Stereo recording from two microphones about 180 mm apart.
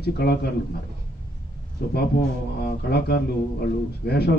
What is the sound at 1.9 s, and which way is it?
A man's voice, 60° left (ahead or behind).